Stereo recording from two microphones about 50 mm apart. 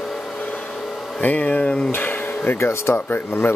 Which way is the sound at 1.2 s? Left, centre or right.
Left.